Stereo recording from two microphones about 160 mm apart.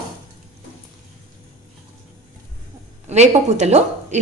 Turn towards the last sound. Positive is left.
turn(degrees=-45)  # may be behind; listen again after turning